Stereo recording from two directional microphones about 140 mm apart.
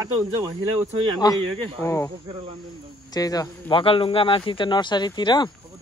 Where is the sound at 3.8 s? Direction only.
40° left (ahead or behind).